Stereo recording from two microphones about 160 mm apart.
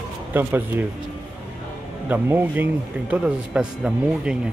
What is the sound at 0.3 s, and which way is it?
Speech, 10° right (ahead or behind).